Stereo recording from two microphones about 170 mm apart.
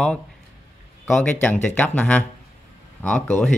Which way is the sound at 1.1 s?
10° left (ahead or behind).